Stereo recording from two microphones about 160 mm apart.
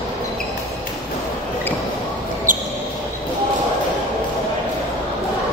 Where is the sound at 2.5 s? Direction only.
55° right (ahead or behind).